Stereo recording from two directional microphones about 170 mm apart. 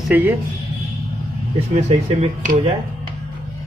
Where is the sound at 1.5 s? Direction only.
40° right (ahead or behind).